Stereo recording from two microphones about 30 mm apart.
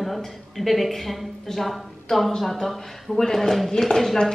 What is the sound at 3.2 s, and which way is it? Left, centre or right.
Speech, centre.